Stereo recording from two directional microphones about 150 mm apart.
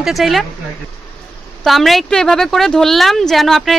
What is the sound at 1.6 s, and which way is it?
Speech, centre (ahead or behind).